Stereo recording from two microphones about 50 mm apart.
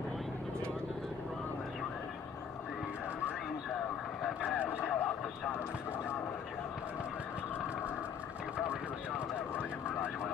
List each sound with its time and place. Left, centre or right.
4.8 s vehicle: left